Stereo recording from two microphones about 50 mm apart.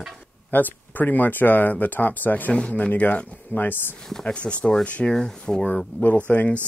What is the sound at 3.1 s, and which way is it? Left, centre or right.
Speech, left.